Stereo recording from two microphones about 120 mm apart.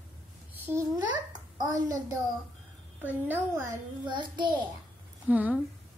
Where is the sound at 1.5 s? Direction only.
30° right (ahead or behind).